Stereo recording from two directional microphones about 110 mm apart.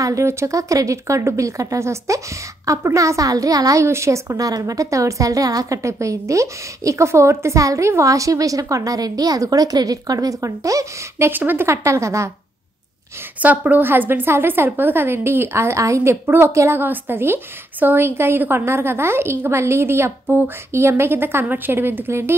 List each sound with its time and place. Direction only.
0.0 s speech: 25° right (ahead or behind)
13.4 s speech: 15° right (ahead or behind)